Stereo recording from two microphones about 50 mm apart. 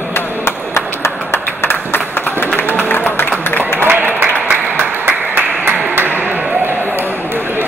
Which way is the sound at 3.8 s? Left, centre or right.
Right.